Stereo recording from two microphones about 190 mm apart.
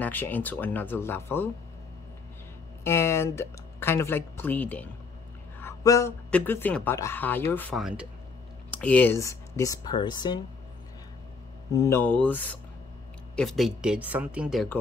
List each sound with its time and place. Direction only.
0.0 s speech: 10° left (ahead or behind)
2.8 s speech: 15° left (ahead or behind)
7.8 s speech: 5° right (ahead or behind)
8.6 s speech: 5° left (ahead or behind)
11.7 s speech: 15° left (ahead or behind); by 14.8 s centre (ahead or behind)